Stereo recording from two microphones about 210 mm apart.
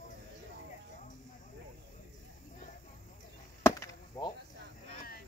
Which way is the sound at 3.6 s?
15° left (ahead or behind).